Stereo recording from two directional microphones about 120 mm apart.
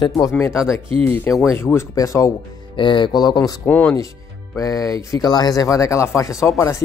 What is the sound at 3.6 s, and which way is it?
Speech, 15° left (ahead or behind).